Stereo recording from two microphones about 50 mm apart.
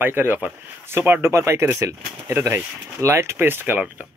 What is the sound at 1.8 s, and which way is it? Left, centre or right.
Speech, right.